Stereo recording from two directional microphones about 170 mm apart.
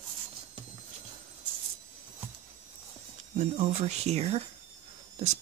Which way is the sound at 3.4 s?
40° right (ahead or behind).